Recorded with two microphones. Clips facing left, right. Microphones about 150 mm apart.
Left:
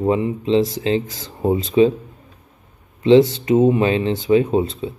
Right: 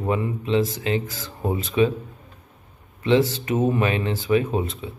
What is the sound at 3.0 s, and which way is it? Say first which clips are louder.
Speech: left 7 dB; 25° left (ahead or behind).